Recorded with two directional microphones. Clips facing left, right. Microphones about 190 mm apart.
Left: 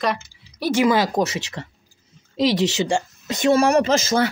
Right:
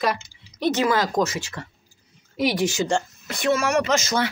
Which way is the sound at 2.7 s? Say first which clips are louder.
Left 1 dB; 20° left (ahead or behind).